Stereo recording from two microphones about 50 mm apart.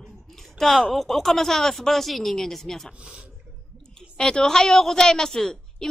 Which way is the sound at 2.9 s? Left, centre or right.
Centre.